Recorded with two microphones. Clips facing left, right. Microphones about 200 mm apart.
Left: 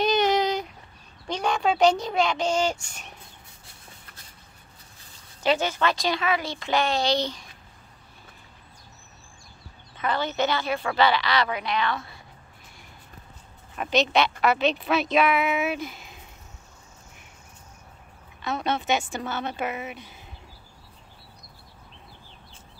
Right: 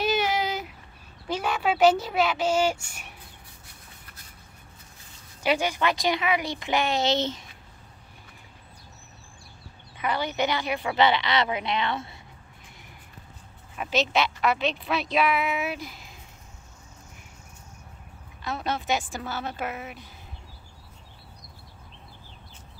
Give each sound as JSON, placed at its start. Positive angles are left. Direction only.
{"t": 0.0, "sound": "child singing", "side_deg": -5}
{"t": 1.2, "sound": "a child's voice", "side_deg": -5}
{"t": 5.4, "sound": "a woman's voice", "side_deg": -10}
{"t": 9.9, "sound": "a woman's voice", "side_deg": -10}
{"t": 13.7, "sound": "a woman's voice", "side_deg": -5}
{"t": 18.4, "sound": "a woman's voice", "side_deg": 0}